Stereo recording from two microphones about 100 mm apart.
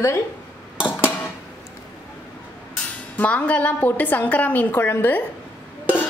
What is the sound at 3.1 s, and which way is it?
A woman's voice, 15° left (ahead or behind).